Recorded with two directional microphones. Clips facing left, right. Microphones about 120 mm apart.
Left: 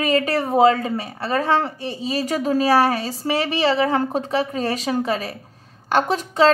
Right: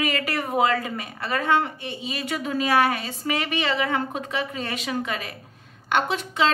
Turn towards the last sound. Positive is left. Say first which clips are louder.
# left 6 dB
turn(degrees=40)  # may be behind; listen again after turning